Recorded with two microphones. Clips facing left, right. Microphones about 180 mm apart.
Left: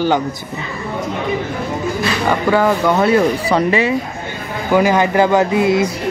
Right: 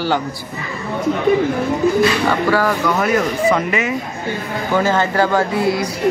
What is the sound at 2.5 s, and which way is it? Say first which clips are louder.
Speech: left 3 dB; 25° left (ahead or behind).